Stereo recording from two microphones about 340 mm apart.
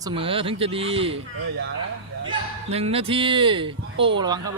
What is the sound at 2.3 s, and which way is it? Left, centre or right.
Speech, centre.